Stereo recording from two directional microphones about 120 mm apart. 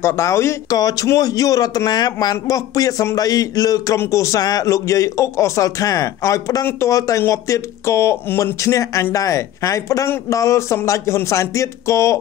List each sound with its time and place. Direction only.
0.0 s speech: 20° left (ahead or behind)